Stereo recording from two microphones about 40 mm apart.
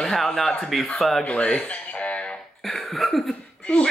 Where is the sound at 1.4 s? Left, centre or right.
Left.